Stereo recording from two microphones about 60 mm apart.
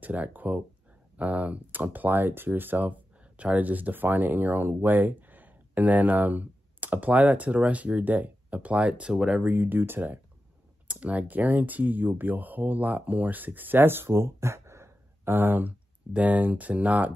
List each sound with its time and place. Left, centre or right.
0.0 s speech: right; by 9.4 s centre
9.4 s speech: right
15.3 s speech: right